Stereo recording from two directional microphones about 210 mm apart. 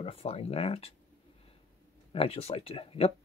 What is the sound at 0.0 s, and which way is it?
Speech, 25° left (ahead or behind).